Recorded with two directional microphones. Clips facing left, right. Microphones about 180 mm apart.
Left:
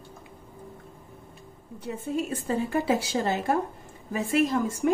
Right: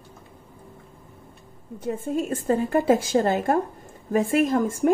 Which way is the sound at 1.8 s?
45° right (ahead or behind).